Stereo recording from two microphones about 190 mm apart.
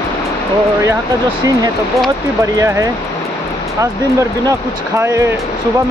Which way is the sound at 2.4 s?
15° right (ahead or behind).